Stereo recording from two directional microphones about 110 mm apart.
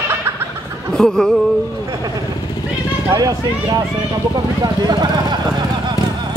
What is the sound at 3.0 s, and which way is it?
Speech, 35° right (ahead or behind).